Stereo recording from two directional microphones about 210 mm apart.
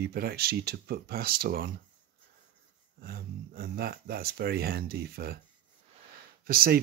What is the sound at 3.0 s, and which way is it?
Speech, 45° right (ahead or behind).